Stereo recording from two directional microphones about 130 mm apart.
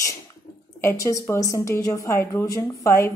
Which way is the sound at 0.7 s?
25° left (ahead or behind).